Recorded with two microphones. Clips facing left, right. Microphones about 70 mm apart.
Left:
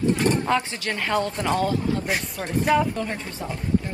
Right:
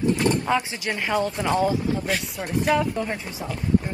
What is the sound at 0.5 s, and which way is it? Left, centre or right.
Speech, centre.